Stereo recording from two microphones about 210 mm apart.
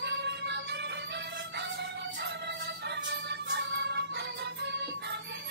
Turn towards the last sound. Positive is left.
turn(degrees=-55)  # may be behind; listen again after turning